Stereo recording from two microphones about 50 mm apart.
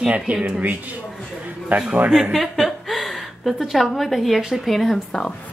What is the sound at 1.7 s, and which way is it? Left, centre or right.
Speech, right.